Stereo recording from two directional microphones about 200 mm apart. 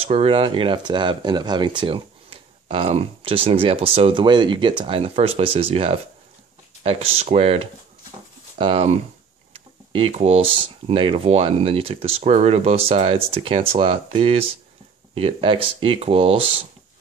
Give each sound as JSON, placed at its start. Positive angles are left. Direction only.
{"t": 0.0, "sound": "speech", "side_deg": -30}
{"t": 9.5, "sound": "a sound", "side_deg": -25}
{"t": 10.5, "sound": "speech", "side_deg": -25}